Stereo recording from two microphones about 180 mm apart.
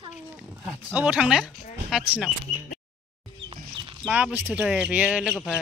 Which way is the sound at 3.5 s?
30° right (ahead or behind).